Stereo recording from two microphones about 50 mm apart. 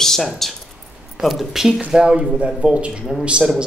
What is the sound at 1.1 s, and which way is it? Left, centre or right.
A man's voice, centre.